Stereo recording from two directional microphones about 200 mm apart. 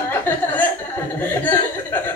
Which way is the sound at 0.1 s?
10° left (ahead or behind).